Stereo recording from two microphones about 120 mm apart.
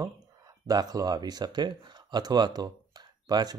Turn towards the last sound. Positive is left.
turn(degrees=-35)  # may be behind; listen again after turning